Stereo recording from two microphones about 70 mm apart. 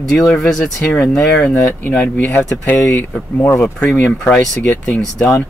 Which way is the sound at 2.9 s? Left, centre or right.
Left.